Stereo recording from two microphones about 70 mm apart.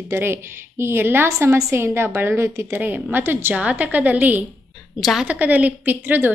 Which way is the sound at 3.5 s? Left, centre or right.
Centre.